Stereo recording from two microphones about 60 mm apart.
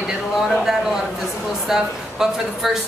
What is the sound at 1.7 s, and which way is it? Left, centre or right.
Speech, centre.